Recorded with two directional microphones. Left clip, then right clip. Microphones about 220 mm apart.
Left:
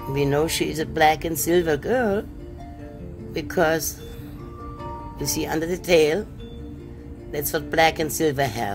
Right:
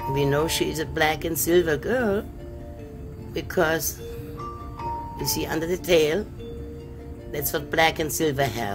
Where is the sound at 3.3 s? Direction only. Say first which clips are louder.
Left 2 dB; 10° left (ahead or behind).